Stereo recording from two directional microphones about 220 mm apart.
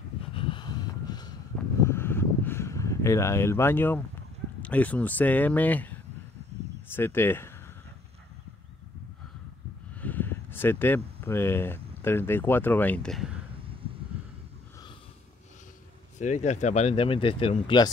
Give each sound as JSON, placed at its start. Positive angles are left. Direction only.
{"t": 0.3, "sound": "a sound", "side_deg": 25}
{"t": 4.6, "sound": "speech", "side_deg": 5}
{"t": 9.9, "sound": "speech", "side_deg": 5}
{"t": 16.2, "sound": "speech", "side_deg": 35}